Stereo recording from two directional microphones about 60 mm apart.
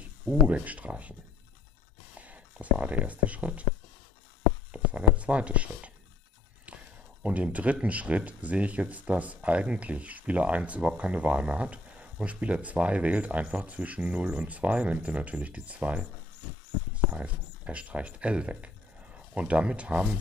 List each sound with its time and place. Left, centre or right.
0.7 s speech: right
2.1 s speech: right
4.7 s speech: right
7.2 s speech: right
17.1 s speech: right